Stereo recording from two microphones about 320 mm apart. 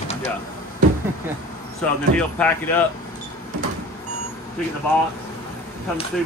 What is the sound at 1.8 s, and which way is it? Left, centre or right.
Speech, centre.